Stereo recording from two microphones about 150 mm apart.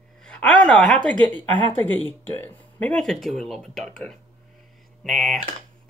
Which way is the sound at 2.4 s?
10° left (ahead or behind).